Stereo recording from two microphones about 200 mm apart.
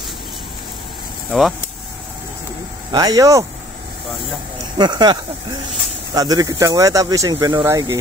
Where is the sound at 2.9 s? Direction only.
20° right (ahead or behind).